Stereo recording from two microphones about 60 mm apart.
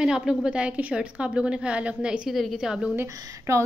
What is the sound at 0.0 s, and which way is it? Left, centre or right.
A woman's voice, centre.